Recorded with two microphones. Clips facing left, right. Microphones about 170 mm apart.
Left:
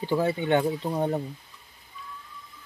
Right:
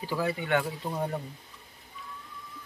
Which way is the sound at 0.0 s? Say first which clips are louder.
Left 5 dB; 25° left (ahead or behind).